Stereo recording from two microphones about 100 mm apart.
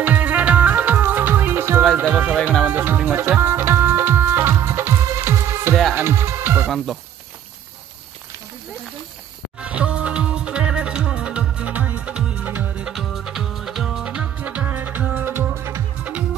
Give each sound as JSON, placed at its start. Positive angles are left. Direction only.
{"t": 0.0, "sound": "music", "side_deg": -15}
{"t": 9.6, "sound": "music", "side_deg": -10}
{"t": 12.8, "sound": "music", "side_deg": -5}